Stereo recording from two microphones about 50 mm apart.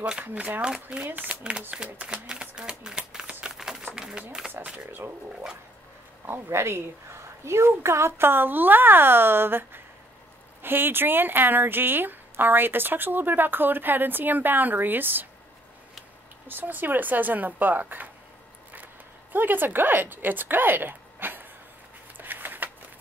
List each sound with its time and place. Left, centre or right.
0.3 s speech: right
1.0 s speech: right
1.8 s a sound: centre
6.2 s speech: right
16.4 s speech: right
19.3 s speech: right
22.1 s a sound: right